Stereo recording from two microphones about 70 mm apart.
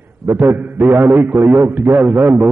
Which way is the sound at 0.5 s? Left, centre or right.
Right.